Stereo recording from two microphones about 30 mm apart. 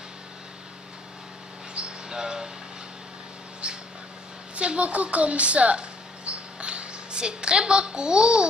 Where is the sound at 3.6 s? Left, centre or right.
Right.